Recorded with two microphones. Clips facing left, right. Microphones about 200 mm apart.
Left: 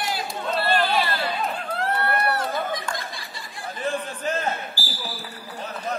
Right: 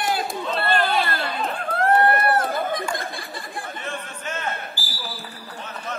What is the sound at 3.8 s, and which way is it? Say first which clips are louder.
Chatter: left 6 dB; 35° left (ahead or behind).